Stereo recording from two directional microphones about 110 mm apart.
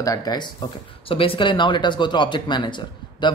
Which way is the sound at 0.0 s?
35° left (ahead or behind).